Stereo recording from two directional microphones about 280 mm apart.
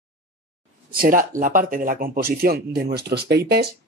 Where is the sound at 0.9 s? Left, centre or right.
Right.